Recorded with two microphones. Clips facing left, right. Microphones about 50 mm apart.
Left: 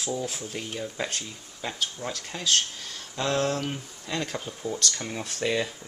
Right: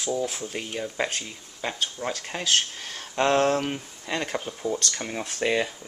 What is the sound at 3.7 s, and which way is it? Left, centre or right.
Speech, right.